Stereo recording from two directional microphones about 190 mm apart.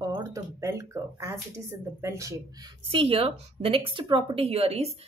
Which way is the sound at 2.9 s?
30° right (ahead or behind).